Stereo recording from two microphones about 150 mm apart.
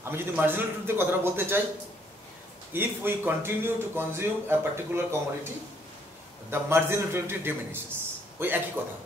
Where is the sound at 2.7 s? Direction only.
15° right (ahead or behind).